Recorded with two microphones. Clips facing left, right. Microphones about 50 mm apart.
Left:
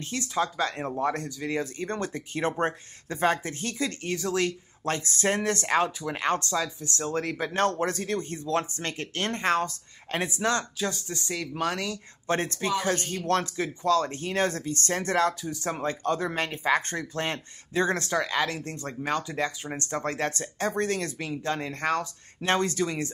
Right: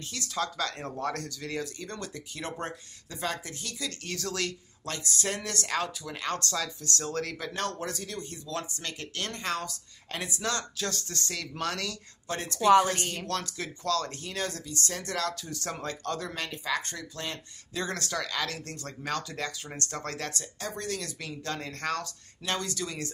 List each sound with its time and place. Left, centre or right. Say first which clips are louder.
0.0 s speech: left 5 dB; left
6.4 s speech: left 4 dB; centre
10.8 s speech: left 3 dB; centre
12.3 s speech: right 4 dB; left
13.6 s speech: left 6 dB; left
15.4 s speech: left 6 dB; centre
22.4 s speech: left 7 dB; left